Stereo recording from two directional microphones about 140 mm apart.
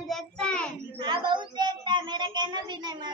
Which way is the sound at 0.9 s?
35° right (ahead or behind).